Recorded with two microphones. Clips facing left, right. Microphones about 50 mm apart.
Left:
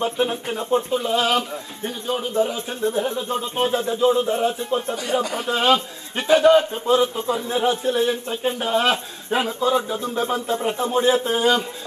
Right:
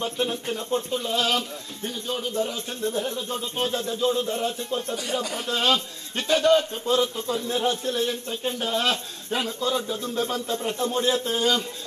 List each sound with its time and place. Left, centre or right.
0.0 s speech: left